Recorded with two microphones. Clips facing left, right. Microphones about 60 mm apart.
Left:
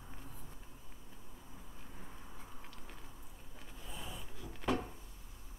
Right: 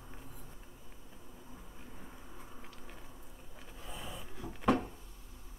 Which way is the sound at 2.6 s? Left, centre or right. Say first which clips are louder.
Right 2 dB; centre.